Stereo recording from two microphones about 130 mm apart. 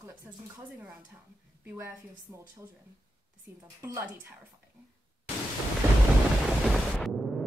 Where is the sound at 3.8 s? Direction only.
20° right (ahead or behind).